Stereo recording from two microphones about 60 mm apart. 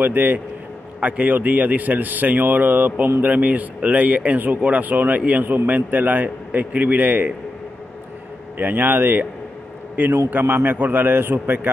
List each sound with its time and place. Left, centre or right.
0.0 s a man's voice: right
8.5 s a man's voice: right